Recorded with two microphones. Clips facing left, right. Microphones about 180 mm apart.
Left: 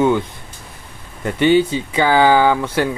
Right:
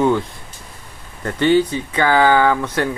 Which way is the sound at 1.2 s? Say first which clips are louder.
Left 1 dB; 15° left (ahead or behind).